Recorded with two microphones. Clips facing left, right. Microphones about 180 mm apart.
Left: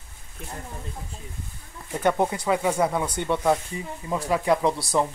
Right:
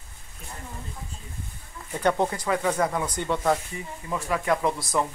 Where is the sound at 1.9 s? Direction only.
10° left (ahead or behind).